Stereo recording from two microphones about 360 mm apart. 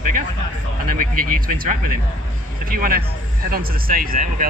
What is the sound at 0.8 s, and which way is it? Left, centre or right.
Speech, right.